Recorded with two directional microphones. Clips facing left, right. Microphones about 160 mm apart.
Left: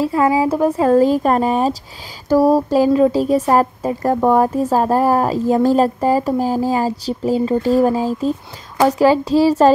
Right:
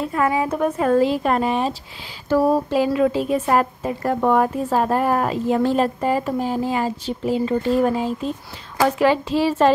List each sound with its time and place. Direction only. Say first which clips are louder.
0.0 s a woman's voice: left 5 dB; 25° left (ahead or behind)